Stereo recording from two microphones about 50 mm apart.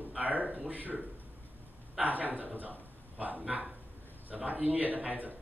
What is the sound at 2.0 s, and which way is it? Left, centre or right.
Speech, right.